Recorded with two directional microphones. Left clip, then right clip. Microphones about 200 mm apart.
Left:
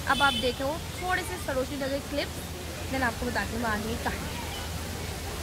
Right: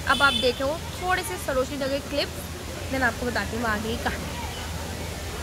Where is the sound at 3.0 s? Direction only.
20° right (ahead or behind).